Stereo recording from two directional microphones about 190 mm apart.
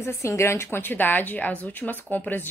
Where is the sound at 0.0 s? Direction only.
15° left (ahead or behind).